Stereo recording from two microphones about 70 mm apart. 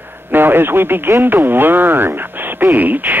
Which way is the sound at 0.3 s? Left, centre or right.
Right.